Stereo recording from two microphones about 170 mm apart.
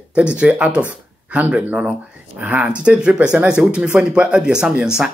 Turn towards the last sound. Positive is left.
turn(degrees=-5)  # may be behind; listen again after turning